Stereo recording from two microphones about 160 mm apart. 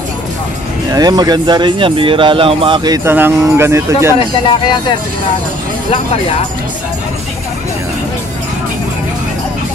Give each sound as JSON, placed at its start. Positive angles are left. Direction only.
{"t": 0.9, "sound": "speech", "side_deg": -25}
{"t": 3.1, "sound": "speech", "side_deg": -15}
{"t": 4.2, "sound": "speech", "side_deg": 30}